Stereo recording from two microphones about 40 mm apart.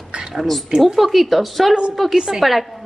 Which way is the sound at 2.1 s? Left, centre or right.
Centre.